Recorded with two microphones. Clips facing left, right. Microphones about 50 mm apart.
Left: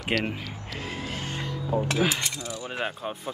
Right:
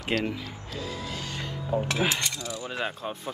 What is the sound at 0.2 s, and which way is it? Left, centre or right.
Speech, left.